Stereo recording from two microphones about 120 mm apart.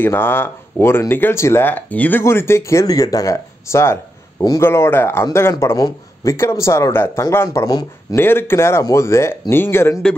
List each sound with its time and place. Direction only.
0.0 s speech: 20° left (ahead or behind)
8.2 s speech: 20° left (ahead or behind)